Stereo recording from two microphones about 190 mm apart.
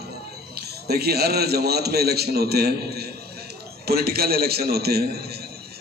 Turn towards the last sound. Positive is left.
turn(degrees=-55)  # may be behind; listen again after turning